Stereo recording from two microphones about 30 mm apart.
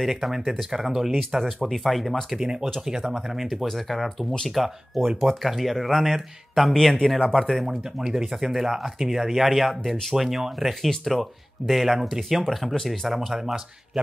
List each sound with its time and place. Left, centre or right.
0.0 s speech: centre
1.7 s speech: centre
2.3 s speech: right
3.7 s speech: centre
7.6 s speech: centre
12.4 s speech: centre
13.0 s speech: centre